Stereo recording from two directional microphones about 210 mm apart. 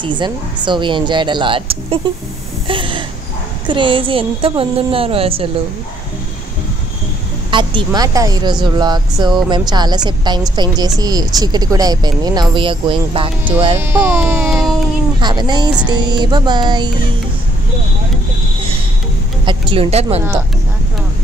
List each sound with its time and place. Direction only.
0.0 s speech: 20° right (ahead or behind)
2.7 s a sound: 25° right (ahead or behind)
3.6 s speech: 25° right (ahead or behind)
7.5 s speech: 20° right (ahead or behind)
13.7 s speech: 10° right (ahead or behind)
15.1 s speech: 20° right (ahead or behind)
19.4 s speech: 25° right (ahead or behind)